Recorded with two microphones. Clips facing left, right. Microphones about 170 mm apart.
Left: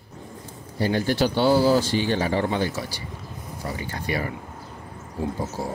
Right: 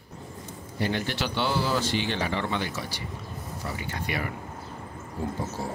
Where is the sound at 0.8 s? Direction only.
40° left (ahead or behind).